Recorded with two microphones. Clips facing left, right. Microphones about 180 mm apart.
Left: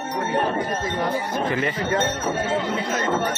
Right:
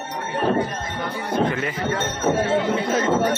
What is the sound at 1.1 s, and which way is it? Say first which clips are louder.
Speech: even; 60° right (ahead or behind).